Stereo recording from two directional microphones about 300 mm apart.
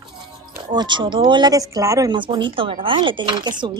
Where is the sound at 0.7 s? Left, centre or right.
Centre.